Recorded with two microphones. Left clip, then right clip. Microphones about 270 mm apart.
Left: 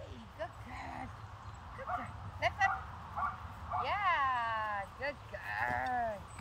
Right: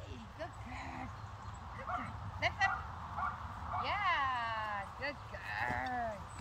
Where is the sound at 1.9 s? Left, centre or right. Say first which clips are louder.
Left 1 dB; centre.